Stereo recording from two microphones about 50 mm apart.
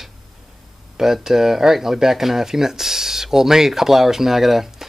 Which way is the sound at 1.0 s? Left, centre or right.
Centre.